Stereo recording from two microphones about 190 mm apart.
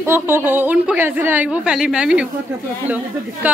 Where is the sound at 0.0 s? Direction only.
10° right (ahead or behind).